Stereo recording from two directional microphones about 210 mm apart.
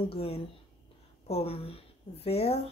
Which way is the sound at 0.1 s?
25° left (ahead or behind).